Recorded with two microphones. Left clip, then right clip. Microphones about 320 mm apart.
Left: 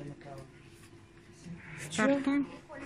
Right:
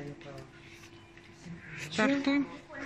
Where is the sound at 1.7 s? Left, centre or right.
Centre.